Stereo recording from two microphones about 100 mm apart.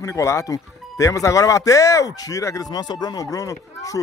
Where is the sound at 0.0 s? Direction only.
30° left (ahead or behind).